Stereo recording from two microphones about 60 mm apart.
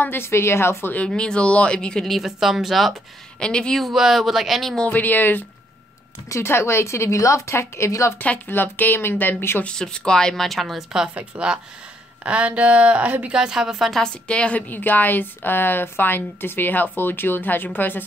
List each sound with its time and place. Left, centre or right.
0.0 s a woman's voice: left
0.9 s speech: centre
2.0 s speech: centre
3.3 s speech: centre
3.7 s speech: centre
4.8 s a woman's voice: left
6.4 s a woman's voice: left
8.5 s a woman's voice: left
9.8 s a woman's voice: centre; by 13.3 s right
13.3 s a woman's voice: centre
13.9 s speech: centre
14.7 s a woman's voice: left